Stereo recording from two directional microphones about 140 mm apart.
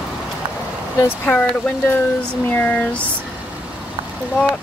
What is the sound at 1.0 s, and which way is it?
Speech, 10° left (ahead or behind).